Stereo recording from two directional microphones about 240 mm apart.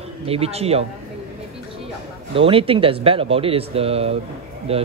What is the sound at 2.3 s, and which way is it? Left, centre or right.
Speech, right.